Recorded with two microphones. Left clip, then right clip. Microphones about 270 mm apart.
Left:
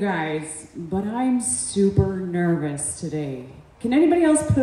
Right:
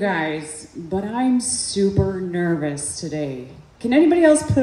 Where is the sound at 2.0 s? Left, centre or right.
Right.